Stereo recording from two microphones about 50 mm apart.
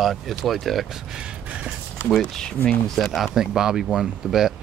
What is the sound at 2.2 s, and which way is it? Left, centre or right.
Speech, centre.